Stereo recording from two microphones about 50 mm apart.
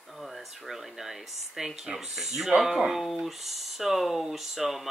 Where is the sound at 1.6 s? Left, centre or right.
Centre.